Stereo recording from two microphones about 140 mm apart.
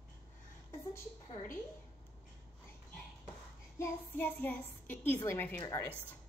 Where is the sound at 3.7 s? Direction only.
15° left (ahead or behind).